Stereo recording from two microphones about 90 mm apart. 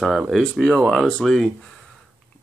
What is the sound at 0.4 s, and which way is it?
Speech, 5° left (ahead or behind).